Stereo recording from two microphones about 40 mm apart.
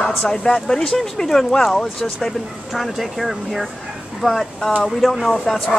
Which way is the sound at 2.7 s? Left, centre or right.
Centre.